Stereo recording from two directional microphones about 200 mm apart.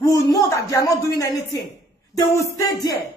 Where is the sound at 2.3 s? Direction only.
15° left (ahead or behind).